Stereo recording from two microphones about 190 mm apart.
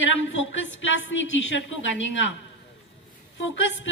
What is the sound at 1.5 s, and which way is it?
Speech, 75° left (ahead or behind).